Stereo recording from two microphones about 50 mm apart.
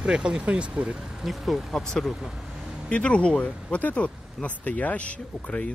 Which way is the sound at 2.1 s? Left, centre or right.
Centre.